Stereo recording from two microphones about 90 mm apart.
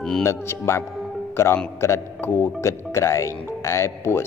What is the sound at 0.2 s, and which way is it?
A man's voice, 30° left (ahead or behind).